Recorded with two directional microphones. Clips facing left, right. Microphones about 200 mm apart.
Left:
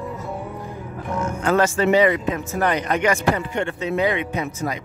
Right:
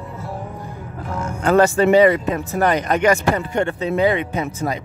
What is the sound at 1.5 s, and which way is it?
Speech, 35° right (ahead or behind).